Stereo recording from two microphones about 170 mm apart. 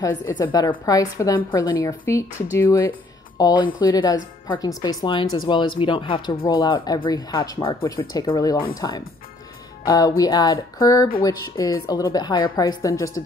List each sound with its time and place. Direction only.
0.0 s a woman's voice: 20° left (ahead or behind)